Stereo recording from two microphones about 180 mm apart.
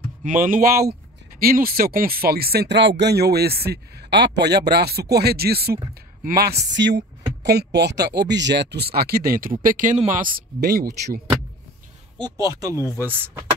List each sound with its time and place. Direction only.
0.2 s speech: 45° right (ahead or behind)
10.6 s speech: 60° right (ahead or behind)
12.2 s speech: 20° right (ahead or behind)